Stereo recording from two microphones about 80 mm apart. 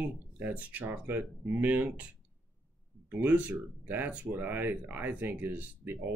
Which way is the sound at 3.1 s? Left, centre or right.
Right.